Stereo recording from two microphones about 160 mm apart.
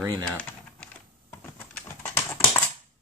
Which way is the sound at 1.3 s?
10° left (ahead or behind).